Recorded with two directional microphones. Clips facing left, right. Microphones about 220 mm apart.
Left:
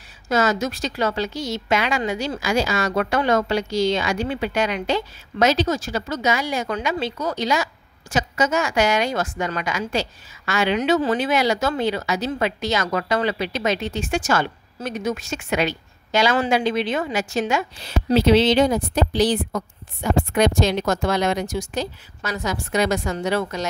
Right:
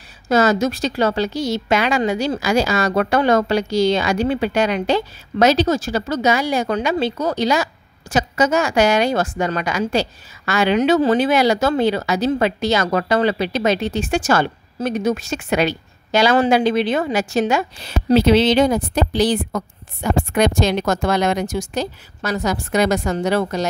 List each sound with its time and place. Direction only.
0.3 s speech: 35° right (ahead or behind)
18.1 s speech: 60° right (ahead or behind)
21.5 s speech: 40° right (ahead or behind)